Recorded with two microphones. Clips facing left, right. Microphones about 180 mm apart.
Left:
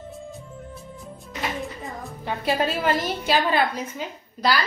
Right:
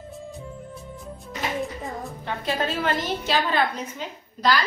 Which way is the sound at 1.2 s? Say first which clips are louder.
Right 2 dB; centre (ahead or behind).